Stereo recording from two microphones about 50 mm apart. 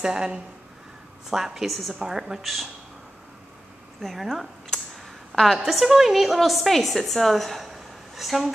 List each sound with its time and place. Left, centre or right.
0.0 s a woman's voice: centre
2.4 s a woman's voice: centre
4.0 s a woman's voice: centre